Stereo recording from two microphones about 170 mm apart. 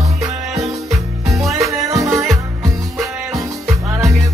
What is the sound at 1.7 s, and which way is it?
Music, 20° right (ahead or behind).